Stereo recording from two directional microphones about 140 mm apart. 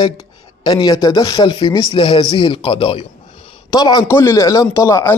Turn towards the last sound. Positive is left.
turn(degrees=25)  # may be behind; listen again after turning